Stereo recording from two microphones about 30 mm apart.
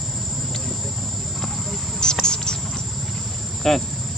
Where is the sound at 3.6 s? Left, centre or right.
Centre.